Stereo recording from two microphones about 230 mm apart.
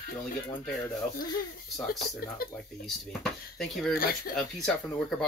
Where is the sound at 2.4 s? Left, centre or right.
Left.